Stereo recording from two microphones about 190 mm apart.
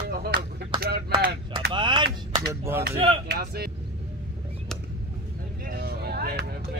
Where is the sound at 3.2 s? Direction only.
55° right (ahead or behind).